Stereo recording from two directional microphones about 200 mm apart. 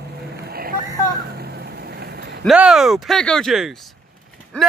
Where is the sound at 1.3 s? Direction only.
50° right (ahead or behind).